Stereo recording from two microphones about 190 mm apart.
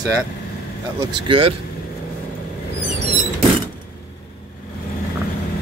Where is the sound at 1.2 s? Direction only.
25° right (ahead or behind).